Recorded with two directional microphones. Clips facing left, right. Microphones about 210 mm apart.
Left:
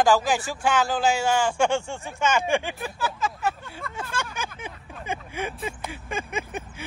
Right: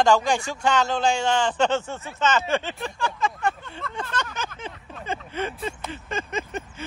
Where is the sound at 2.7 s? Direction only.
5° left (ahead or behind).